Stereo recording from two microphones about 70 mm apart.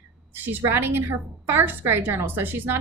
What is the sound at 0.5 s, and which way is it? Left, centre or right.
A woman's voice, right.